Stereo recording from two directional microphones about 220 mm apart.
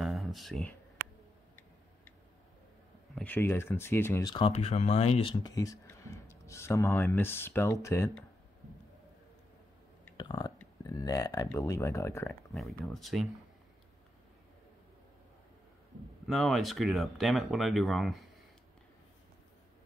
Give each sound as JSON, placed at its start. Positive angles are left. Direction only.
{"t": 0.0, "sound": "a sound", "side_deg": 0}
{"t": 3.2, "sound": "speech", "side_deg": 10}
{"t": 10.1, "sound": "burping", "side_deg": 20}
{"t": 10.6, "sound": "a sound", "side_deg": 15}
{"t": 11.4, "sound": "speech", "side_deg": 15}
{"t": 12.5, "sound": "speech", "side_deg": 0}
{"t": 16.3, "sound": "speech", "side_deg": 0}